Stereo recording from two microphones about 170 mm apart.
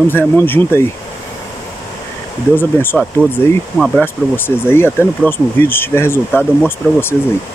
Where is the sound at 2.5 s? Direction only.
15° left (ahead or behind).